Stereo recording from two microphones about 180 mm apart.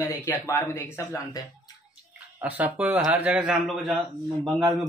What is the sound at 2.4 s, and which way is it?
A man's voice, 10° right (ahead or behind).